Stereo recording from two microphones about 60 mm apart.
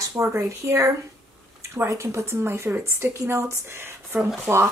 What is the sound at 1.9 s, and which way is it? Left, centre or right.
Speech, right.